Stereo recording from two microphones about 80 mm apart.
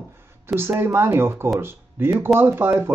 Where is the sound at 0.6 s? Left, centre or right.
Right.